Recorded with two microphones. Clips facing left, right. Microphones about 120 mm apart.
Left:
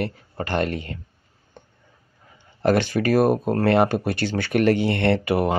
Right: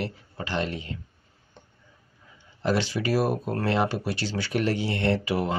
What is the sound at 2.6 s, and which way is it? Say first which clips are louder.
Speech: left 6 dB; 55° left (ahead or behind).